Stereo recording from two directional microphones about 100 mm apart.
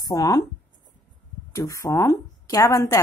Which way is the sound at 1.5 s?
35° left (ahead or behind).